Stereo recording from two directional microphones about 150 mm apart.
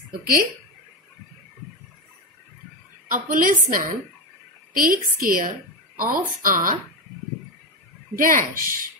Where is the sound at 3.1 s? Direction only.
65° right (ahead or behind).